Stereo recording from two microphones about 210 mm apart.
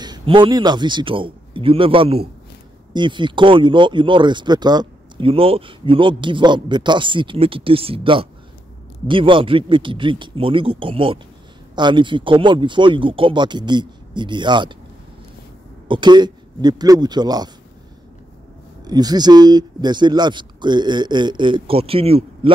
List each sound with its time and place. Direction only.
0.0 s a man's voice: 20° right (ahead or behind)
15.9 s speech: 20° right (ahead or behind)
18.9 s speech: 20° right (ahead or behind)